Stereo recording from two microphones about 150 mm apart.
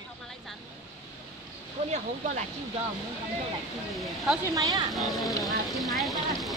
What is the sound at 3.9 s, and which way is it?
Speech, centre (ahead or behind).